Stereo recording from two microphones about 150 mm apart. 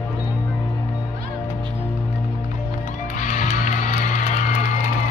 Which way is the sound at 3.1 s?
60° left (ahead or behind).